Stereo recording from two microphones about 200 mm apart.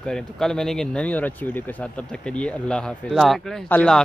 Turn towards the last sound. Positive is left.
turn(degrees=5)  # may be behind; listen again after turning